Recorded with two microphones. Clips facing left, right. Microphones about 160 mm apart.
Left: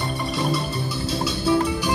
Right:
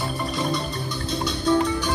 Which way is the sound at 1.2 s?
5° left (ahead or behind).